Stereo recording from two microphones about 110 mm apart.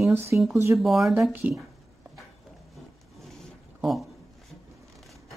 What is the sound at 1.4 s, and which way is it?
Speech, 15° right (ahead or behind).